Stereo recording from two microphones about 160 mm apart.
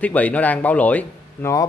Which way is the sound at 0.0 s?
10° left (ahead or behind).